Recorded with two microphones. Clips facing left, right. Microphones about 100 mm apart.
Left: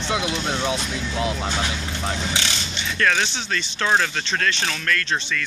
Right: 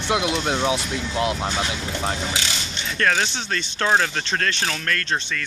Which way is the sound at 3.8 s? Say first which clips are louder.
Right 1 dB; 25° right (ahead or behind).